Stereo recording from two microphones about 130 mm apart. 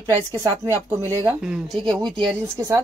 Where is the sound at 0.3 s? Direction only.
25° right (ahead or behind).